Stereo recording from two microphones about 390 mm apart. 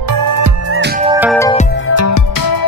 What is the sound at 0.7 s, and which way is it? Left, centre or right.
Music, right.